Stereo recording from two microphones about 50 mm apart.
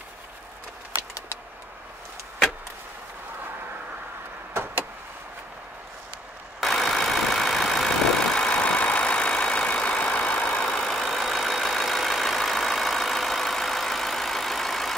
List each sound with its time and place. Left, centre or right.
4.6 s vehicle: right
6.6 s vehicle: centre; by 10.7 s left
10.7 s vehicle: centre